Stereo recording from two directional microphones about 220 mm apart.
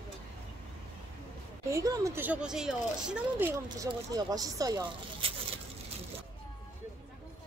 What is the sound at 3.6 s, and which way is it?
A woman's voice, 15° right (ahead or behind).